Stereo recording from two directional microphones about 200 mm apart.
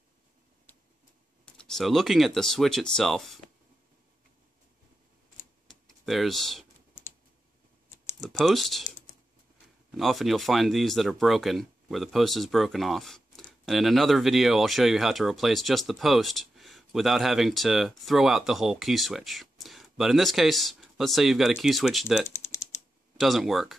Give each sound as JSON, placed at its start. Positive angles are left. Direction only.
{"t": 1.4, "sound": "speech", "side_deg": 5}
{"t": 5.7, "sound": "computer keyboard", "side_deg": 0}
{"t": 8.2, "sound": "speech", "side_deg": 0}
{"t": 8.8, "sound": "computer keyboard", "side_deg": 35}
{"t": 9.8, "sound": "speech", "side_deg": 0}
{"t": 22.2, "sound": "typing", "side_deg": 15}
{"t": 23.1, "sound": "speech", "side_deg": 0}